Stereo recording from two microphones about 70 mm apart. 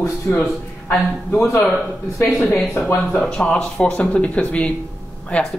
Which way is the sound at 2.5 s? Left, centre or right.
Centre.